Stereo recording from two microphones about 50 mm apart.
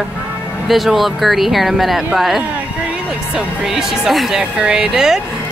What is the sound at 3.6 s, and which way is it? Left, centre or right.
Speech, centre.